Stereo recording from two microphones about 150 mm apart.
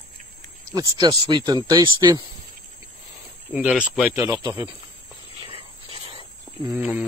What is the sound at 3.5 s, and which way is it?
Speech, 10° right (ahead or behind).